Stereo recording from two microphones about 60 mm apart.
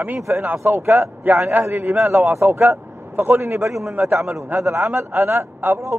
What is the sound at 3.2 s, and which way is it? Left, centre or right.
Speech, right.